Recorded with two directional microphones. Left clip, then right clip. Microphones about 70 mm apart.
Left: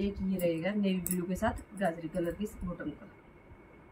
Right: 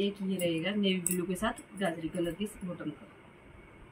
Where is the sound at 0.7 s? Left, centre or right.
Left.